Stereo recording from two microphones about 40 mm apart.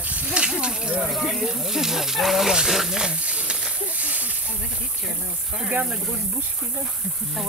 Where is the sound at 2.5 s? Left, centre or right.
Centre.